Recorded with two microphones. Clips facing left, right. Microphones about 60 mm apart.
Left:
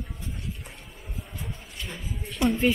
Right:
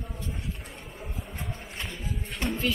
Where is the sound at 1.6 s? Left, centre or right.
Right.